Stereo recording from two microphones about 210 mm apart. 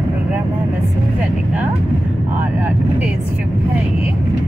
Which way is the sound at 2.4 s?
10° right (ahead or behind).